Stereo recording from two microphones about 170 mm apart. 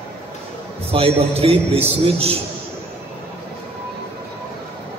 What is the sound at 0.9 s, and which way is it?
A man's voice, 35° right (ahead or behind).